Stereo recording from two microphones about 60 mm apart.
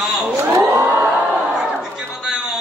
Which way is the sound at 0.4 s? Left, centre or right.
Right.